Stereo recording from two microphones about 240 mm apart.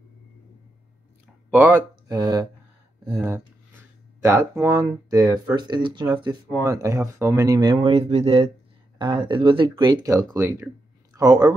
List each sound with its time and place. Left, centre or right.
1.5 s speech: centre